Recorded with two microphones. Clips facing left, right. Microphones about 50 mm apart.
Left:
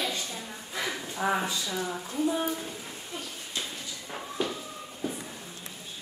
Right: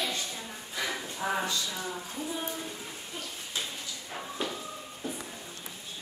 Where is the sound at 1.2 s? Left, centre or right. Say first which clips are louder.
Left 4 dB; left.